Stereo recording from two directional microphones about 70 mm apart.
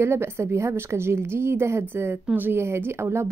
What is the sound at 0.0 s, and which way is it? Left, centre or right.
Speech, right.